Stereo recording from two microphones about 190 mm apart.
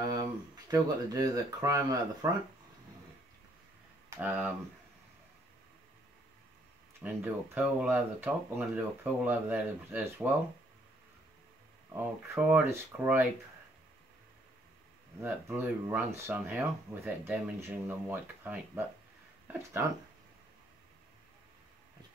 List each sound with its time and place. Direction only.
0.0 s speech: 20° right (ahead or behind)
4.2 s speech: 10° right (ahead or behind)
7.0 s speech: 10° right (ahead or behind)
11.9 s speech: 10° right (ahead or behind)
15.2 s speech: 10° right (ahead or behind)